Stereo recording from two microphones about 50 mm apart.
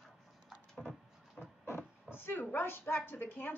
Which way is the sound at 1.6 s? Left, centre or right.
Left.